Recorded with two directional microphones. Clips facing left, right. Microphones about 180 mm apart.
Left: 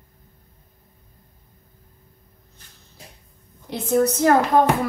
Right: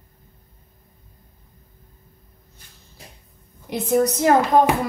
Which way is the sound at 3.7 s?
15° right (ahead or behind).